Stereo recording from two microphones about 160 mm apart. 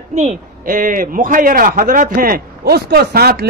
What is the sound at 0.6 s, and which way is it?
A man's voice, 60° right (ahead or behind).